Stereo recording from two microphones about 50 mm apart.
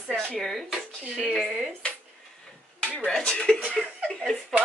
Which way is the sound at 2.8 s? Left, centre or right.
Left.